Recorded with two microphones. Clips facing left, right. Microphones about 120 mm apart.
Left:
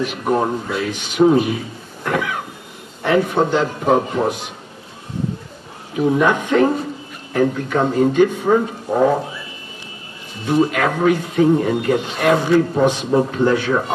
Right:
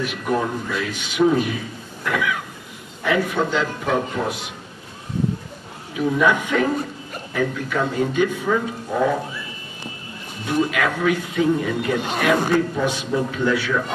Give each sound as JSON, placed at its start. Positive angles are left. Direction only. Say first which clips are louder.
{"t": 0.0, "sound": "speech", "louder": "left 4 dB", "side_deg": 40}
{"t": 2.0, "sound": "a sound", "louder": "left 2 dB", "side_deg": 45}
{"t": 3.1, "sound": "speech", "louder": "left 5 dB", "side_deg": 35}
{"t": 5.9, "sound": "speech", "louder": "left 3 dB", "side_deg": 45}
{"t": 10.6, "sound": "speech", "louder": "left 4 dB", "side_deg": 40}